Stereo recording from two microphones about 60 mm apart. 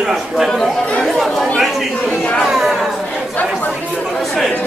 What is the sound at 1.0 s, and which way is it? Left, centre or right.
Chatter, centre.